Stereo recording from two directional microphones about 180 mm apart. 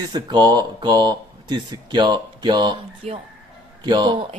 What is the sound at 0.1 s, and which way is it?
Speech, 25° right (ahead or behind).